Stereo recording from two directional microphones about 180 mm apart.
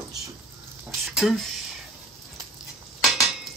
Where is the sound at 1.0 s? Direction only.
Centre (ahead or behind).